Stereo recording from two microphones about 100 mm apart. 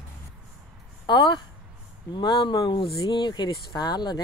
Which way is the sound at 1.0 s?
50° left (ahead or behind).